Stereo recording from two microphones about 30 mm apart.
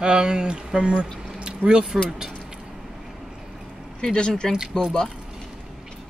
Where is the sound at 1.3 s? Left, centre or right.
Right.